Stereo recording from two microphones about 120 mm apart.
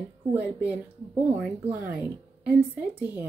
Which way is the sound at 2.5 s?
15° right (ahead or behind).